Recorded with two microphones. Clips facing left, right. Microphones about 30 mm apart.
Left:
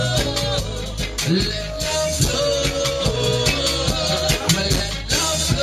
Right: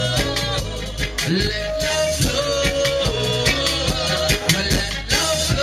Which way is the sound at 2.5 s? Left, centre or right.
Centre.